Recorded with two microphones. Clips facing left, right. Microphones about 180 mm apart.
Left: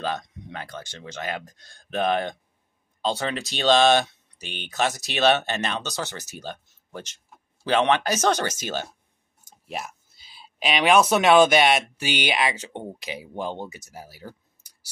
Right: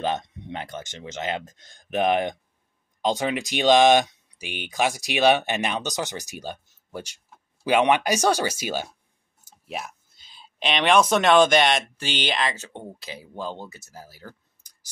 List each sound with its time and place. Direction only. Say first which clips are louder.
0.0 s speech: right 3 dB; 20° right (ahead or behind)
9.7 s speech: even; centre (ahead or behind)